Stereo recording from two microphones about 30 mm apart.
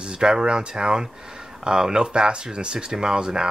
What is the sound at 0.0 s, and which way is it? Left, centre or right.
Speech, right.